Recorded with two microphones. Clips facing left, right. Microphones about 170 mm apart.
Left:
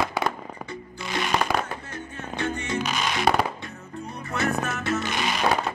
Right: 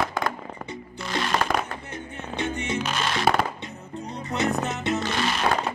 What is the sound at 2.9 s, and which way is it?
Music, 5° left (ahead or behind).